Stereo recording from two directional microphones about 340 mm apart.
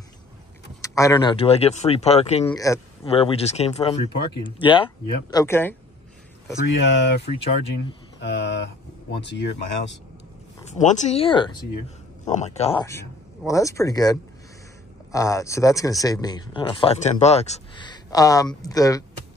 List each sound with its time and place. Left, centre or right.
0.8 s speech: centre
6.6 s speech: left
8.2 s speech: left
10.7 s speech: left